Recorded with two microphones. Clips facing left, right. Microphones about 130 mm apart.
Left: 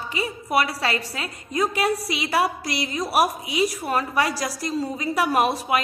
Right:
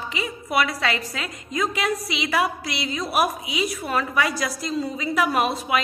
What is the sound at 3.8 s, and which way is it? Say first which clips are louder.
A woman's voice: even; 35° left (ahead or behind).